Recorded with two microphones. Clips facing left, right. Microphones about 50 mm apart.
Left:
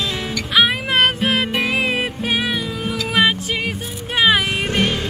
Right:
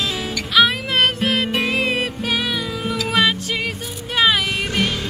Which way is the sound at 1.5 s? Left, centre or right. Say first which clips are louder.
Left 1 dB; centre.